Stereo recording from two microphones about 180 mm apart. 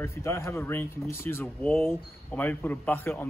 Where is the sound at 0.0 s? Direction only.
15° left (ahead or behind).